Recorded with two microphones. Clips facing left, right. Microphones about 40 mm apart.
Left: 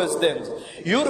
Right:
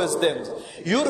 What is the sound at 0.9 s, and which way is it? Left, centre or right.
Speech, left.